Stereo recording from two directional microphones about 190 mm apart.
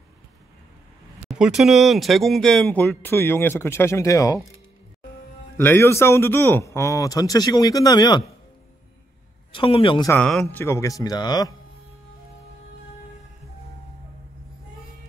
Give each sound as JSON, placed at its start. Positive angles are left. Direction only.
{"t": 1.4, "sound": "speech", "side_deg": 0}
{"t": 5.6, "sound": "speech", "side_deg": 10}
{"t": 9.5, "sound": "a man's voice", "side_deg": 30}
{"t": 10.0, "sound": "speech", "side_deg": 5}
{"t": 10.6, "sound": "speech", "side_deg": 15}